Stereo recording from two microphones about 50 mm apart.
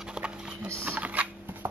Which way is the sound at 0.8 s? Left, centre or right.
Right.